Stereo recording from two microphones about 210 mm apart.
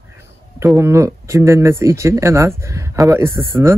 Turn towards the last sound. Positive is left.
turn(degrees=-10)  # may be behind; listen again after turning